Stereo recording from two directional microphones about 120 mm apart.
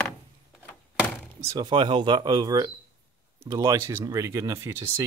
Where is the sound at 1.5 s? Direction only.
40° right (ahead or behind).